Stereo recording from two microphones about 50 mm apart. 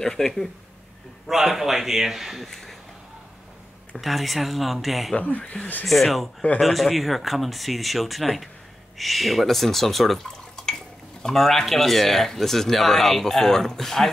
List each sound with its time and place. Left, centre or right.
0.0 s speech: centre
1.2 s a man's voice: centre
2.5 s a sound: centre
3.9 s speech: centre
5.1 s speech: left
5.9 s speech: centre